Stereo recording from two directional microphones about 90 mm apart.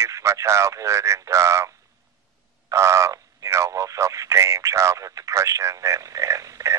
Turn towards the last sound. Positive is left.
turn(degrees=-35)  # may be behind; listen again after turning